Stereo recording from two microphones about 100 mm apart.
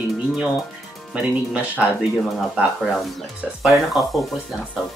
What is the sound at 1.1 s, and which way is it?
Speech, 10° right (ahead or behind).